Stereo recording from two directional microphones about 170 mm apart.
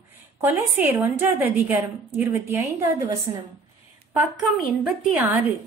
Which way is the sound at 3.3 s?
30° right (ahead or behind).